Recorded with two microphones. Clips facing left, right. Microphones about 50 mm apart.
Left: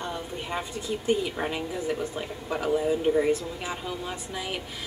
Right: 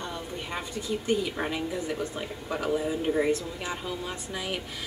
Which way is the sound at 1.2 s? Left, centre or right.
Centre.